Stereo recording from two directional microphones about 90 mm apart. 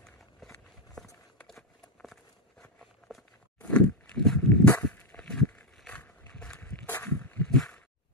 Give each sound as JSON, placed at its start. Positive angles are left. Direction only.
{"t": 1.5, "sound": "run", "side_deg": 0}
{"t": 2.8, "sound": "walk", "side_deg": 0}
{"t": 3.6, "sound": "walk", "side_deg": 15}
{"t": 4.6, "sound": "a sound", "side_deg": 25}
{"t": 5.1, "sound": "walk", "side_deg": 10}
{"t": 7.5, "sound": "a sound", "side_deg": 5}